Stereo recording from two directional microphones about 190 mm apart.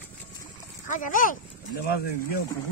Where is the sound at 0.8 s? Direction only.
45° left (ahead or behind).